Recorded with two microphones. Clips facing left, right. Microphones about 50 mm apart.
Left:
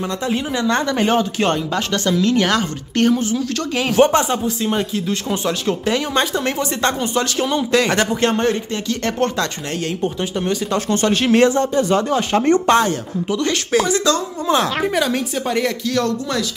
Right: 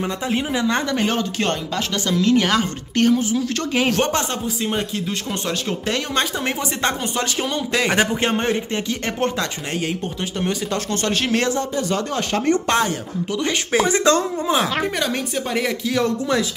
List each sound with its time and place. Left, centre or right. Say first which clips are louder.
0.0 s speech: left 1 dB; centre
0.9 s speech: left 4 dB; centre
2.0 s speech: even; centre
4.0 s speech: left 8 dB; centre
4.6 s speech: left 3 dB; centre
10.9 s speech: left 6 dB; centre
12.6 s speech: left 5 dB; centre
13.4 s speech: left 1 dB; centre
13.8 s speech: right 1 dB; right
14.5 s speech: left 4 dB; centre; by 16.4 s right